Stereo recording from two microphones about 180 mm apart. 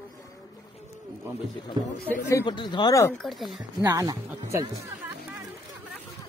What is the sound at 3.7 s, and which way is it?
Speech, 20° right (ahead or behind).